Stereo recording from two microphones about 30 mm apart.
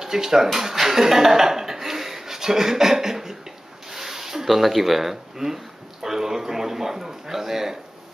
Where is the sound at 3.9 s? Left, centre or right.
Centre.